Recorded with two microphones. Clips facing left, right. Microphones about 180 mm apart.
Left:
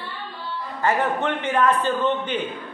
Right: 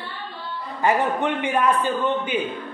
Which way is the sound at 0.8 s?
15° right (ahead or behind).